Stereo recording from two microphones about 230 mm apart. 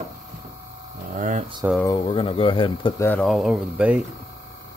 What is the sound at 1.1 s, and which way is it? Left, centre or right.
Speech, right.